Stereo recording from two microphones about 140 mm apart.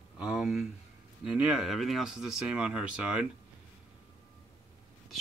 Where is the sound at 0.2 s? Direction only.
5° right (ahead or behind).